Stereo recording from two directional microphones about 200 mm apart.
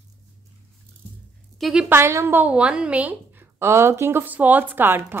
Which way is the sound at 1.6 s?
Centre (ahead or behind).